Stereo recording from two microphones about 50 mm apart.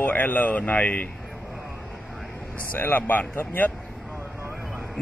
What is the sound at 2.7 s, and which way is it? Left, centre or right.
Speech, left.